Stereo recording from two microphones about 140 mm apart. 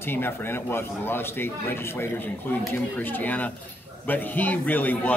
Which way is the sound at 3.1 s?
10° left (ahead or behind).